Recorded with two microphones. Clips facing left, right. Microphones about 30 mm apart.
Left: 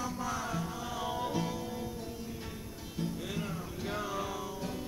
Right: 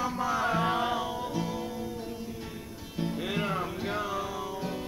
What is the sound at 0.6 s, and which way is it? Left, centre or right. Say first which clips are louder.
Music: right 11 dB; right.